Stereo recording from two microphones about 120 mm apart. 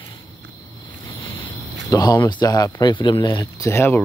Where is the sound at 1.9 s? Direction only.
30° left (ahead or behind).